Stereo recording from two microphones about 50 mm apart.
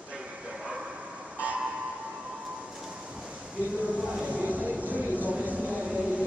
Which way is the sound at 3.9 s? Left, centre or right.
Right.